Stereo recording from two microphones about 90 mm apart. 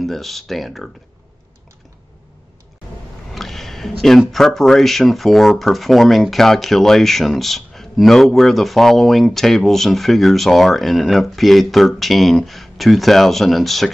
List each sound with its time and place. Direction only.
0.0 s speech: centre (ahead or behind)
3.3 s a sound: centre (ahead or behind)
4.3 s speech: 5° left (ahead or behind)